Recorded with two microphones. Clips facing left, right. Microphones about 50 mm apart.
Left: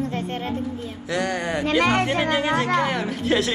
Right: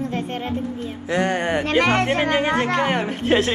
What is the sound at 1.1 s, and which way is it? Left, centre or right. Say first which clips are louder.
Speech: right 4 dB; right.